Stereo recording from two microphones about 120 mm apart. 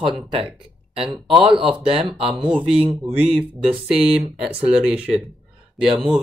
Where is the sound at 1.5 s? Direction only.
50° right (ahead or behind).